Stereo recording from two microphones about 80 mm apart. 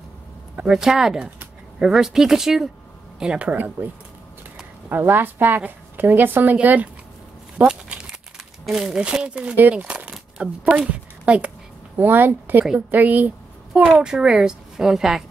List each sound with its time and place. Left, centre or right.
0.6 s a woman's voice: centre
3.4 s a woman's voice: right
7.6 s a sound: centre
8.6 s a woman's voice: centre
10.9 s a sound: centre
12.0 s a woman's voice: right; by 15.2 s centre